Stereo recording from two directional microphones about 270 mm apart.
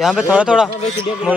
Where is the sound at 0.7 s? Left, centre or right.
Left.